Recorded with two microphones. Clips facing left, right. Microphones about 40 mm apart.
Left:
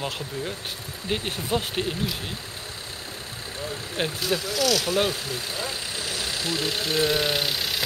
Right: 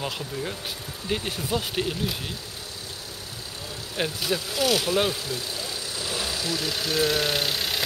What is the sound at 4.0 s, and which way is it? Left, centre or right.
Speech, centre.